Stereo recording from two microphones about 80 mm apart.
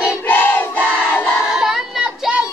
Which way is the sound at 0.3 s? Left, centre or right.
Left.